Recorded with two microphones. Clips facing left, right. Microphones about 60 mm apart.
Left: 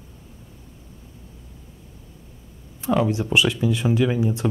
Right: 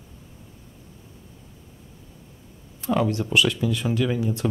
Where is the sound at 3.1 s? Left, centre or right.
Centre.